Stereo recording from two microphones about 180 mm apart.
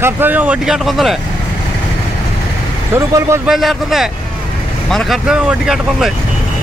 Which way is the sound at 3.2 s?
15° right (ahead or behind).